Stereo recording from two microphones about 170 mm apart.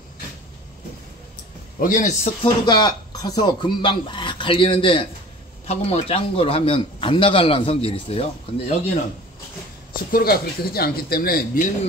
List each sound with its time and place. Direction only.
1.8 s a man's voice: 50° left (ahead or behind)
2.4 s a man's voice: 25° left (ahead or behind)
10.1 s speech: 65° left (ahead or behind)